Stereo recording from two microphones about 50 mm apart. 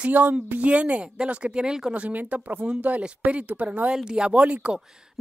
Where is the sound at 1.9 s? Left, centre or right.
Right.